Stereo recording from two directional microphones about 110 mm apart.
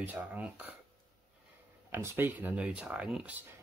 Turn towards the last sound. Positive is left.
turn(degrees=-10)  # may be behind; listen again after turning